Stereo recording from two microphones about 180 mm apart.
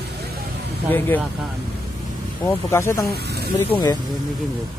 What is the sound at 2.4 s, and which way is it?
Speech, 15° left (ahead or behind).